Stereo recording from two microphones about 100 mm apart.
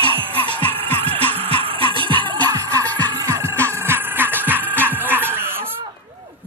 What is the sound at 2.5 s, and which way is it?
Music, 35° right (ahead or behind).